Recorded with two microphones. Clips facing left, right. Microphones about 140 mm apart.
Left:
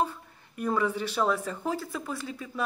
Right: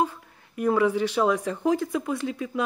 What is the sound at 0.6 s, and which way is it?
Speech, 10° right (ahead or behind).